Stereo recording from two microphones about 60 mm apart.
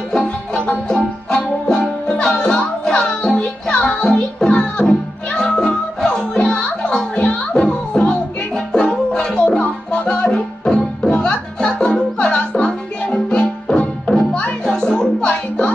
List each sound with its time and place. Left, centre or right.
0.1 s music: centre